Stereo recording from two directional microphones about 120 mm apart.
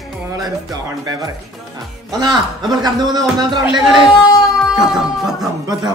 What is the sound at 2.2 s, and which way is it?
Speech, 35° right (ahead or behind).